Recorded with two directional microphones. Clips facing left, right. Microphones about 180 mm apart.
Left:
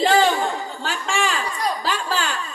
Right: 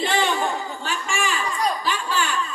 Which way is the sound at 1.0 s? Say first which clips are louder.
Left 3 dB; 90° left.